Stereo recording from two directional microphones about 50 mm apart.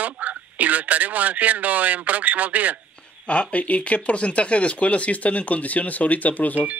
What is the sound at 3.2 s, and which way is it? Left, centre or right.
Speech, left.